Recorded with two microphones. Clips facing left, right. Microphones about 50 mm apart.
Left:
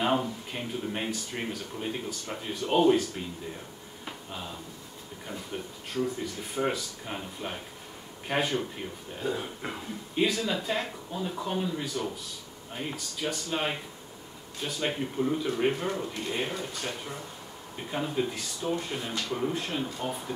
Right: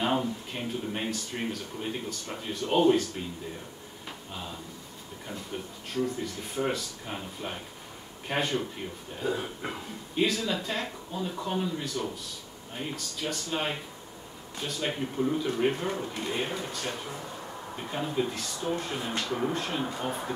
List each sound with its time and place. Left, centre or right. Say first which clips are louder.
0.0 s speech: left 1 dB; centre
4.0 s a sound: left 1 dB; centre
5.9 s speech: even; centre
17.9 s speech: even; centre
19.8 s speech: right 1 dB; centre